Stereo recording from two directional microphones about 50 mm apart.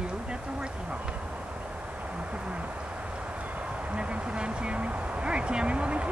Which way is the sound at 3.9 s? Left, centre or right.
Right.